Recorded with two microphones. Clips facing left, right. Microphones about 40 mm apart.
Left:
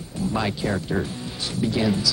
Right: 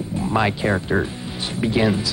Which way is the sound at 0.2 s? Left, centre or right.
Right.